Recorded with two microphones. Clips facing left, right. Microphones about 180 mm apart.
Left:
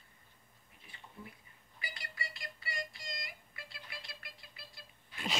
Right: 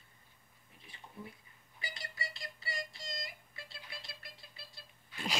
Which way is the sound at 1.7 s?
30° right (ahead or behind).